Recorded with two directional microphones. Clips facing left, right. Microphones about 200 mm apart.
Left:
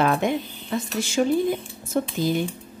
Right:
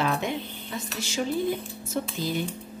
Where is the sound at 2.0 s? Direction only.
55° left (ahead or behind).